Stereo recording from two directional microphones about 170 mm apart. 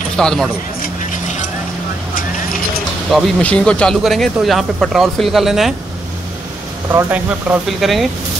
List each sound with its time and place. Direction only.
0.2 s speech: 5° left (ahead or behind)
0.8 s music: 50° left (ahead or behind)
3.1 s speech: centre (ahead or behind)
6.9 s speech: 15° right (ahead or behind)